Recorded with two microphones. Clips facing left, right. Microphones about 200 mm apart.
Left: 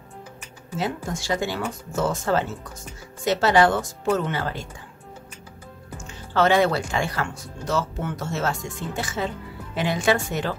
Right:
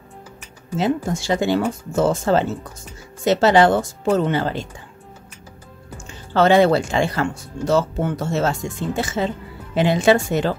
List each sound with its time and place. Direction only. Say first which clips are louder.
0.7 s speech: right 7 dB; 25° right (ahead or behind)
6.3 s speech: right 5 dB; 30° right (ahead or behind)